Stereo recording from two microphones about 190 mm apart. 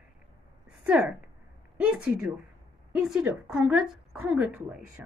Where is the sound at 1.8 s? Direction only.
5° right (ahead or behind).